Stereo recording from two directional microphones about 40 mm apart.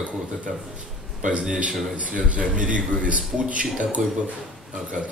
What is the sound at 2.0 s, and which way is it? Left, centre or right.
A man's voice, right.